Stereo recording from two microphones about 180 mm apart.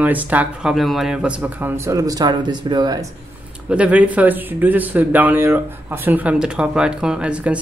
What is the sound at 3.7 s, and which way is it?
Speech, 5° right (ahead or behind).